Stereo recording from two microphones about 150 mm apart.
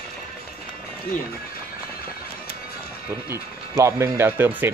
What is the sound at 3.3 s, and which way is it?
Speech, 20° right (ahead or behind).